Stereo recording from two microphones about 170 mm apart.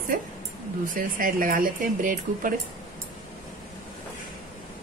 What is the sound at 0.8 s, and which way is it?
Speech, 55° right (ahead or behind).